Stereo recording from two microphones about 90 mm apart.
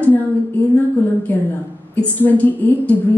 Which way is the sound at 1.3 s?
20° left (ahead or behind).